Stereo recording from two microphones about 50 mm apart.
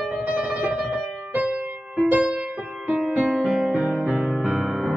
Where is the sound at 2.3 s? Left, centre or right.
Centre.